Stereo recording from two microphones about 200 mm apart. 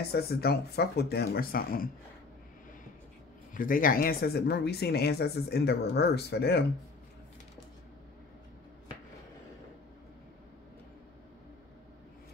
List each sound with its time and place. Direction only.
0.0 s speech: 50° left (ahead or behind)
3.5 s speech: 45° left (ahead or behind)